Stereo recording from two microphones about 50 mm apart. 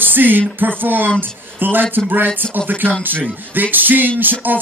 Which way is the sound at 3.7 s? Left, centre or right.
Right.